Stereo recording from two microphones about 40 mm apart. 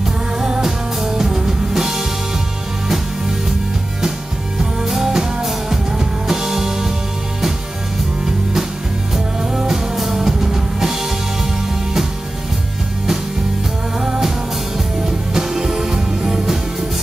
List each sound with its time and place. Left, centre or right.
0.6 s music: centre
4.6 s music: centre
9.1 s music: centre
13.9 s music: centre